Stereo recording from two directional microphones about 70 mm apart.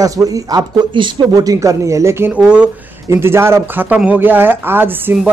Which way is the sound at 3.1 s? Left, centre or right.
Right.